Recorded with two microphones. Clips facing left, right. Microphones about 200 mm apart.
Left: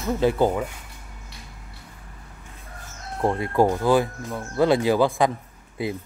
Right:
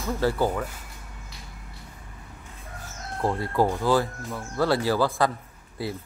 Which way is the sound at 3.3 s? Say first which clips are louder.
Left 4 dB; 20° left (ahead or behind).